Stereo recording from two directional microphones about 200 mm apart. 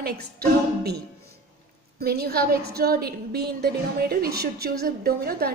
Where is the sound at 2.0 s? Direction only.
50° right (ahead or behind).